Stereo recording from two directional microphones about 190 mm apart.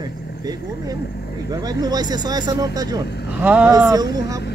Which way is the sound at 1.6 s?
20° right (ahead or behind).